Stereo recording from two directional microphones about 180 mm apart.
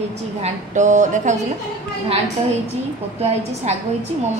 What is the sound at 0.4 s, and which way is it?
A woman's voice, 40° right (ahead or behind).